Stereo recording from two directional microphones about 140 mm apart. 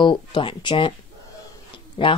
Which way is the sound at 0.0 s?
35° left (ahead or behind).